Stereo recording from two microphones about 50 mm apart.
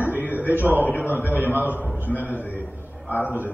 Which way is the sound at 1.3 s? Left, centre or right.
Right.